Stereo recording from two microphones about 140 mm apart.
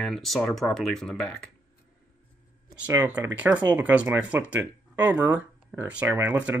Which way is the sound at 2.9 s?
15° right (ahead or behind).